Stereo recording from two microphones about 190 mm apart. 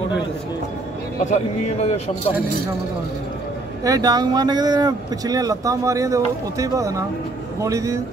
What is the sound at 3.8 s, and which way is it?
A man's voice, 20° right (ahead or behind).